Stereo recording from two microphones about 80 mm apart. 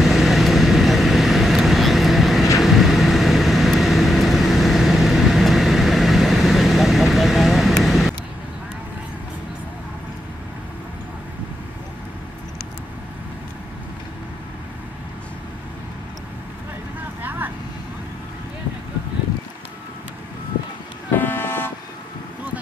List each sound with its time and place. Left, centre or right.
0.0 s vehicle: centre
17.2 s vehicle: right
21.1 s vehicle: left